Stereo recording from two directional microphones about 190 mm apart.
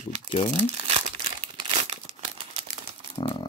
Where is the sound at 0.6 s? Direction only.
30° right (ahead or behind).